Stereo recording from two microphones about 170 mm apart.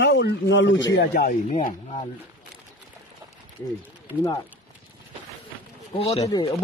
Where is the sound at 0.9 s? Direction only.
70° left (ahead or behind).